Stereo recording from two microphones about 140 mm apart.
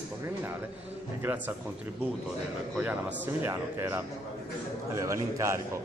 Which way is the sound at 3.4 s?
20° right (ahead or behind).